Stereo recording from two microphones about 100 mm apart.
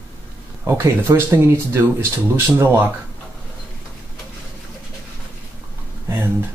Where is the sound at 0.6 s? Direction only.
25° right (ahead or behind).